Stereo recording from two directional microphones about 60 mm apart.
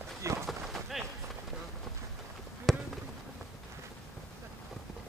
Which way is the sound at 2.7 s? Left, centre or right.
Centre.